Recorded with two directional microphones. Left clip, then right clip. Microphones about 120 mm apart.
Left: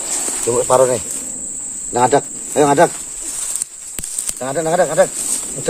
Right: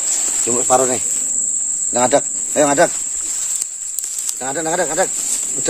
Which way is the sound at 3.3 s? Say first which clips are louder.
Left 1 dB; 75° left (ahead or behind).